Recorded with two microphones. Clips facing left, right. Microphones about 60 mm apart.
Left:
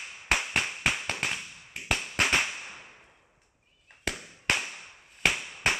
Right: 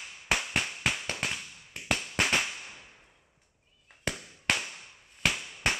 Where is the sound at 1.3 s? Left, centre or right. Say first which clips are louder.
Left 2 dB; centre.